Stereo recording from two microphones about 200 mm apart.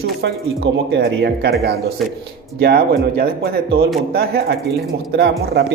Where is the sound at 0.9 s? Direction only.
55° right (ahead or behind).